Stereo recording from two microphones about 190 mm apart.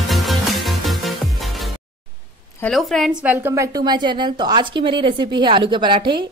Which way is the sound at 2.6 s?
Centre (ahead or behind).